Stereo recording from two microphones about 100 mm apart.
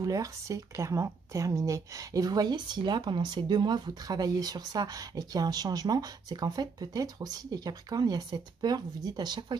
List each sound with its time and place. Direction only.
0.0 s speech: 35° right (ahead or behind)